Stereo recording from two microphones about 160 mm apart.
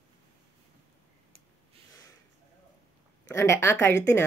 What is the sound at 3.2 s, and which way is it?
Speech, 20° left (ahead or behind).